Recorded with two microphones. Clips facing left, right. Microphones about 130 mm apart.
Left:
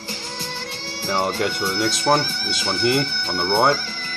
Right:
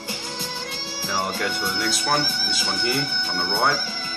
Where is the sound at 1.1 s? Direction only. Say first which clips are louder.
Left 4 dB; 25° left (ahead or behind).